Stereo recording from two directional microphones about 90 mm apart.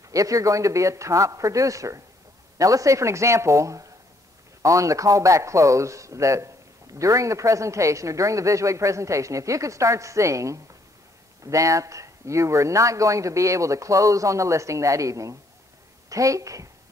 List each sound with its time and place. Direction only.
0.1 s a man's voice: 40° right (ahead or behind)